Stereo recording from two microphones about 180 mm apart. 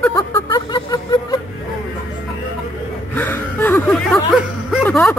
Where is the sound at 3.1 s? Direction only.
10° left (ahead or behind).